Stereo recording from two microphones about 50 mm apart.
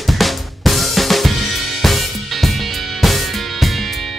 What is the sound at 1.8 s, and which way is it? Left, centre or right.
Music, centre.